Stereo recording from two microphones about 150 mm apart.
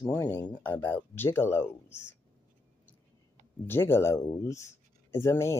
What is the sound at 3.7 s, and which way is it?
Speech, 15° left (ahead or behind).